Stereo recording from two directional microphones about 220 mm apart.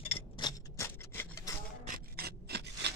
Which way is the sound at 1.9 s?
45° right (ahead or behind).